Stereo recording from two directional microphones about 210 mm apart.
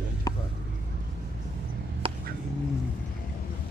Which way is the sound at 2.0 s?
25° right (ahead or behind).